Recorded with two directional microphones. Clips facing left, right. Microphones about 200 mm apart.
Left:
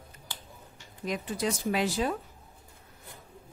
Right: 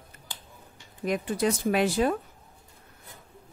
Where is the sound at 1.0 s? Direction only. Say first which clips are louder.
Right 5 dB; 55° right (ahead or behind).